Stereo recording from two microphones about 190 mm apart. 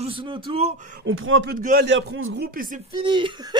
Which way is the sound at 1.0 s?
90° right.